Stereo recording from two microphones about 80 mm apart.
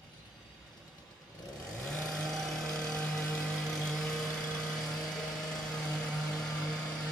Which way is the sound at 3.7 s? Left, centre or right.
Centre.